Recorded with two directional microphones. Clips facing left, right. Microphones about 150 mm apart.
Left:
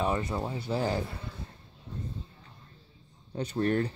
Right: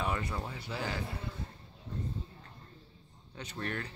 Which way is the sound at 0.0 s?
25° left (ahead or behind).